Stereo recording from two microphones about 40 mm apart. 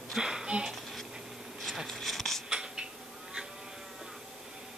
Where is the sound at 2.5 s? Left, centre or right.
Centre.